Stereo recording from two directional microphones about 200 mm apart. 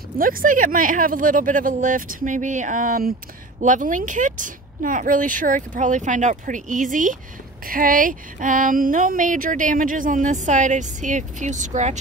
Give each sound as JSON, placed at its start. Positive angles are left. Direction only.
{"t": 0.2, "sound": "speech", "side_deg": -45}